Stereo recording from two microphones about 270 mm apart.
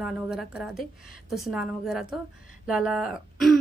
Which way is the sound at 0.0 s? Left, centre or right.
Centre.